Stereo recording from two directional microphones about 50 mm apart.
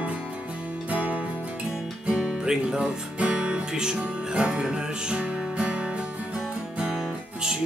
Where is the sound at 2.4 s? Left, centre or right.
Centre.